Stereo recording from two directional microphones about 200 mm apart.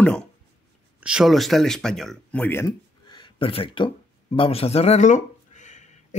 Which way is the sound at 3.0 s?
25° left (ahead or behind).